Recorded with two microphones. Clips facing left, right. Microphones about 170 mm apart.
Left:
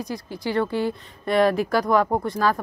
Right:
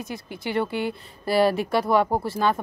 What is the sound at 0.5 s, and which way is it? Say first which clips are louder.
Speech: left 2 dB; 5° right (ahead or behind).